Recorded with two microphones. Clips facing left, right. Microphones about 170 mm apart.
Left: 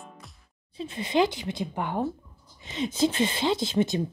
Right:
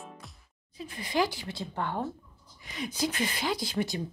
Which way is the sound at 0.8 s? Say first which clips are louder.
Left 5 dB; 25° left (ahead or behind).